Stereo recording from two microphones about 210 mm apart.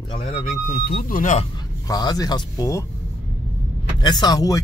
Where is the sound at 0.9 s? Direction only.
40° left (ahead or behind).